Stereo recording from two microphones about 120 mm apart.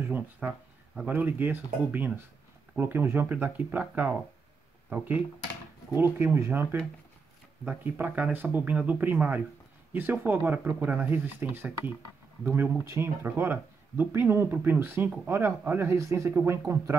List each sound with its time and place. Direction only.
0.0 s speech: 15° right (ahead or behind)